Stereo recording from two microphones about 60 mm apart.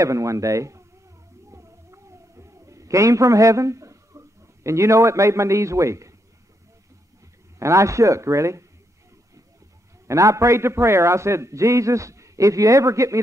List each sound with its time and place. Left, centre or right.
0.0 s a man's voice: right
1.5 s cat: right
4.6 s a man's voice: right
7.5 s a man's voice: right
10.0 s a man's voice: right